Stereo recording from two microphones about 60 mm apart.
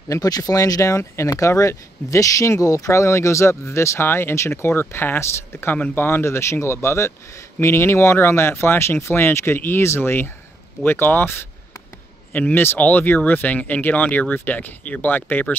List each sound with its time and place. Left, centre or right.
0.1 s speech: left
0.9 s speech: left
5.2 s speech: left
5.7 s speech: left
12.3 s a man's voice: left